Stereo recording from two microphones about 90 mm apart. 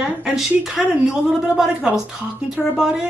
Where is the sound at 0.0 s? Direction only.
5° right (ahead or behind).